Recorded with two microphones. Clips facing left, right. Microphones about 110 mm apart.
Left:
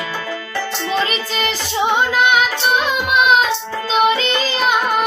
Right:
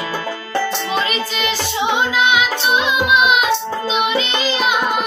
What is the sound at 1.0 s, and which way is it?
Music, 40° left (ahead or behind).